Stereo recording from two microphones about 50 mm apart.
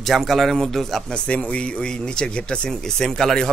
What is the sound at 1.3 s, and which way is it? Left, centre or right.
Speech, left.